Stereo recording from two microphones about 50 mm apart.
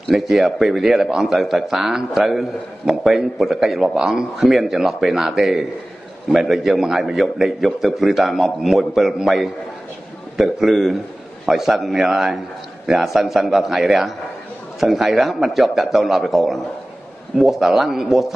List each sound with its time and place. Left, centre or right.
0.1 s a man's voice: centre